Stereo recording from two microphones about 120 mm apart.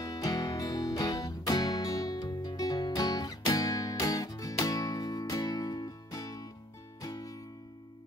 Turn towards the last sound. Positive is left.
turn(degrees=30)  # may be behind; listen again after turning